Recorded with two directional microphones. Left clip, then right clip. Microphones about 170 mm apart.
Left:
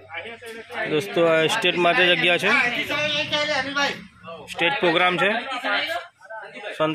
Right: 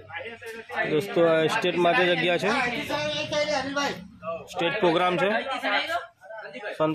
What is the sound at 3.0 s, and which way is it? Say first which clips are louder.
Speech: left 3 dB; 40° right (ahead or behind).